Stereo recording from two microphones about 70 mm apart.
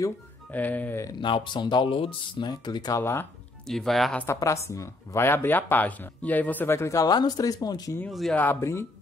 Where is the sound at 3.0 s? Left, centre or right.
Left.